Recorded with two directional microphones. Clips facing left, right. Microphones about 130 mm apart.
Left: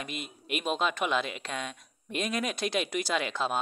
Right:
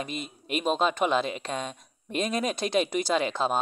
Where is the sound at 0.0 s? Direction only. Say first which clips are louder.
Right 4 dB; 35° right (ahead or behind).